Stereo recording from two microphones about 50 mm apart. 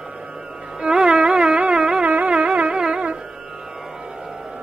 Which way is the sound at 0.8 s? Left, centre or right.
Centre.